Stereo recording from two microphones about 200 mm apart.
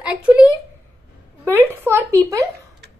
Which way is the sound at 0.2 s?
5° right (ahead or behind).